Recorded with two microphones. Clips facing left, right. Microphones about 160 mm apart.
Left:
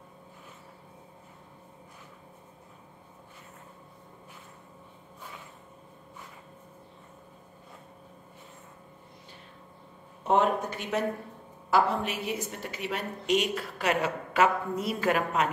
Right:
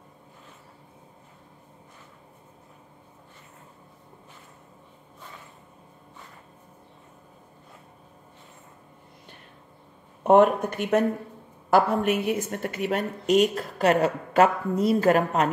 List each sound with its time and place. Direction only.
10.2 s speech: 55° right (ahead or behind); by 15.4 s 40° right (ahead or behind)